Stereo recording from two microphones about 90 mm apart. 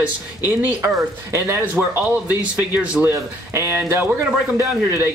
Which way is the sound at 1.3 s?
30° right (ahead or behind).